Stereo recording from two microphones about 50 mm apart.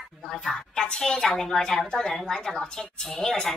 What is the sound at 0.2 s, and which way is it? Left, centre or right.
A woman's voice, centre.